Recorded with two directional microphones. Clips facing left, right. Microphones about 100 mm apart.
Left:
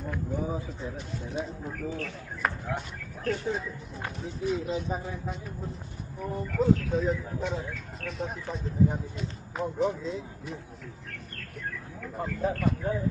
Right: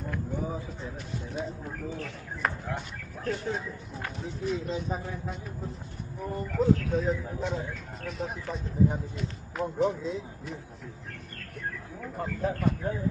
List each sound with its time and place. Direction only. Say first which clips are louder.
0.0 s speech: left 1 dB; 5° left (ahead or behind)
1.7 s speech: left 2 dB; 10° right (ahead or behind)
2.4 s speech: left 1 dB; centre (ahead or behind)
12.2 s speech: left 1 dB; centre (ahead or behind)